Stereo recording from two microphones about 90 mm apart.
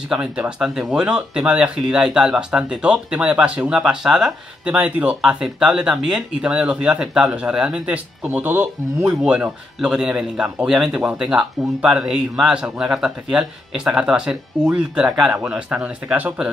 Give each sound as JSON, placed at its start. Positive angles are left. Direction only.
{"t": 0.1, "sound": "speech", "side_deg": -10}